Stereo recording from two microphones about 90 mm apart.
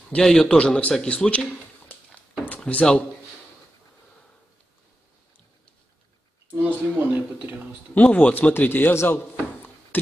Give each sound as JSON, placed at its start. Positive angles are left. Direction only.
{"t": 0.1, "sound": "speech", "side_deg": 5}
{"t": 6.6, "sound": "speech", "side_deg": -20}
{"t": 7.9, "sound": "a man's voice", "side_deg": 15}